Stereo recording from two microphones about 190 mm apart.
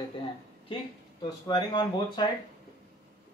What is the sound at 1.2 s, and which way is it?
A man's voice, 20° left (ahead or behind).